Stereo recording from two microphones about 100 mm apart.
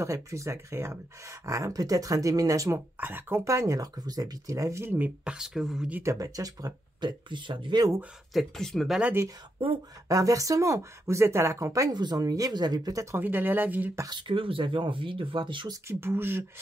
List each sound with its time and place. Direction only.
0.0 s speech: 30° right (ahead or behind)
3.0 s speech: 20° right (ahead or behind)
6.0 s speech: 35° right (ahead or behind)
8.3 s speech: centre (ahead or behind)
9.0 s speech: 25° right (ahead or behind)
10.0 s speech: 35° right (ahead or behind)
13.2 s speech: 20° right (ahead or behind)
14.1 s speech: 55° right (ahead or behind)
15.7 s speech: 25° right (ahead or behind)